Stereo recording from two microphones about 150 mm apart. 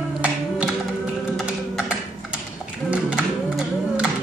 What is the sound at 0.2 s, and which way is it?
Music, 10° right (ahead or behind).